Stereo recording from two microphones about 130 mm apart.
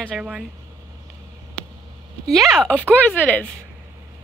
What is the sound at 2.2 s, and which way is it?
A woman's voice, centre (ahead or behind).